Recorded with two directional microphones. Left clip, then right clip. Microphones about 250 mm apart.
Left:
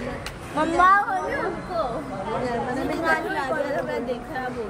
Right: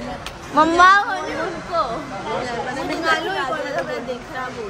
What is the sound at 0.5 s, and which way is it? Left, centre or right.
Speech, right.